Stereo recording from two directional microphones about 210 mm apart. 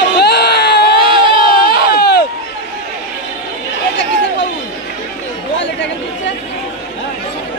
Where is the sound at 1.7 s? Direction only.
50° left (ahead or behind).